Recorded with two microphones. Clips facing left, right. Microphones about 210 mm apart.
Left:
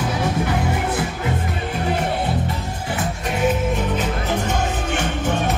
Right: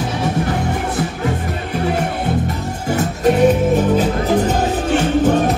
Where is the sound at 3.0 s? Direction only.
40° right (ahead or behind).